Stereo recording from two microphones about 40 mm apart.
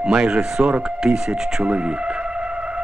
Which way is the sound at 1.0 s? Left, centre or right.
Centre.